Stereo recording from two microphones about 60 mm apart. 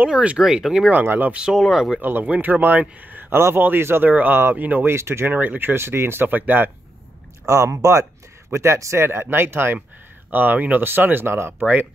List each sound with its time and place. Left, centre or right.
0.1 s speech: right
0.4 s speech: centre
1.0 s speech: right
1.3 s speech: centre
2.0 s speech: right
4.9 s speech: right
5.3 s speech: right
7.4 s speech: right
9.0 s speech: right
11.6 s speech: right